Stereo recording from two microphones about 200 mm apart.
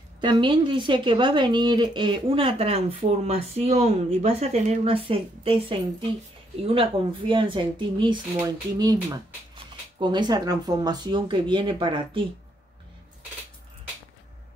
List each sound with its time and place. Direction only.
0.2 s speech: 25° right (ahead or behind)